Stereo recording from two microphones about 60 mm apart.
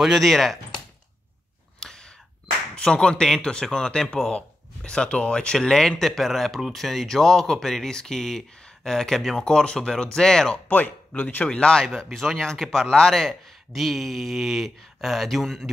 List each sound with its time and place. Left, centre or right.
0.0 s speech: centre
1.8 s a sound: centre
2.7 s speech: centre
10.7 s speech: left
11.4 s speech: centre